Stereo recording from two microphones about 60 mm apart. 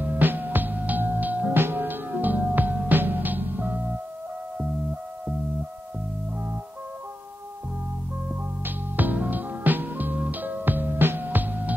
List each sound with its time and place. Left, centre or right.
0.0 s music: right
8.3 s music: right